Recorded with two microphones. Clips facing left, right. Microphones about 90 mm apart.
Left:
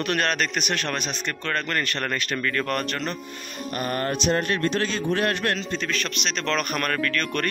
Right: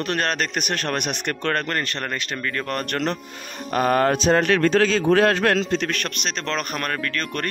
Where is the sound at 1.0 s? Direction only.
65° right (ahead or behind).